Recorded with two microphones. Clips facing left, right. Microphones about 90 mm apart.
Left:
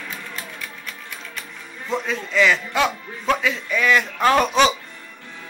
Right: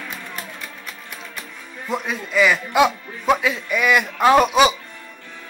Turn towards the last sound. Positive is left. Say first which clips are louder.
# right 3 dB
turn(degrees=-5)  # may be behind; listen again after turning